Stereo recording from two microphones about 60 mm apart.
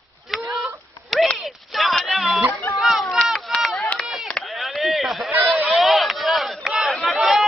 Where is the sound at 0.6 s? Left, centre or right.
Centre.